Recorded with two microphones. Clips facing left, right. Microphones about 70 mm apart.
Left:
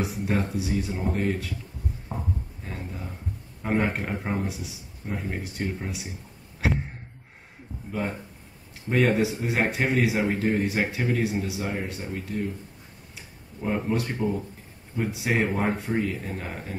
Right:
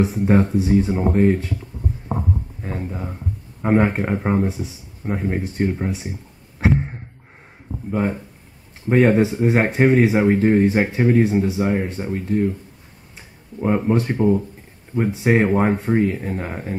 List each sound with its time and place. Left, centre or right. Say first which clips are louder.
0.0 s speech: right 10 dB; right
2.0 s a sound: right 9 dB; right
3.6 s speech: right 8 dB; right
7.9 s speech: right 8 dB; right
13.6 s speech: right 8 dB; right